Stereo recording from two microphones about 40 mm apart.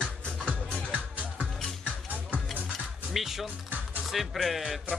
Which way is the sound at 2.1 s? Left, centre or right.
Right.